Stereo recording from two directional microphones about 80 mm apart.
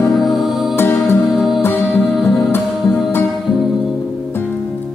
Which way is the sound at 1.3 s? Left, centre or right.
Centre.